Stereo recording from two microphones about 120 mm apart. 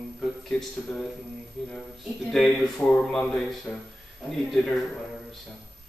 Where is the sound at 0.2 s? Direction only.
5° left (ahead or behind).